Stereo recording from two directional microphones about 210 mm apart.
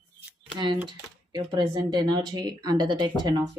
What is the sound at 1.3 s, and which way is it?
Speech, 20° right (ahead or behind).